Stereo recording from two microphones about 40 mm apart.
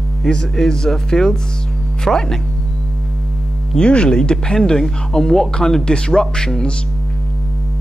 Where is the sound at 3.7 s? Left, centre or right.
Left.